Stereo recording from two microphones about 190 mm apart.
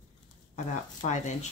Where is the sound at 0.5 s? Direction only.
40° left (ahead or behind).